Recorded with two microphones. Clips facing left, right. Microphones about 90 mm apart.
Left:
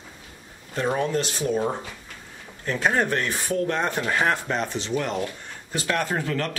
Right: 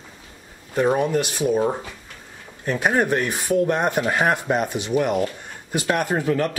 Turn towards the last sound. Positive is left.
turn(degrees=-15)  # may be behind; listen again after turning